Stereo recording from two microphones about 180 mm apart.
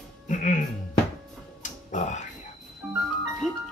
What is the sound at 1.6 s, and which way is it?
Music, 40° left (ahead or behind).